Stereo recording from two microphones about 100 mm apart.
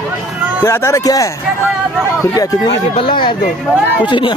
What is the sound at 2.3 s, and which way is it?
Speech, 35° left (ahead or behind).